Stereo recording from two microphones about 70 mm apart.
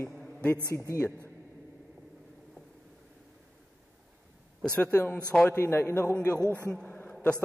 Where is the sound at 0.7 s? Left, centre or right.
Left.